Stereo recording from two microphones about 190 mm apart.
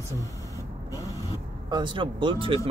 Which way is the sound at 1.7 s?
25° right (ahead or behind).